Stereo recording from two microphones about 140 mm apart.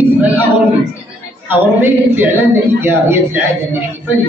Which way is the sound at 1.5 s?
15° right (ahead or behind).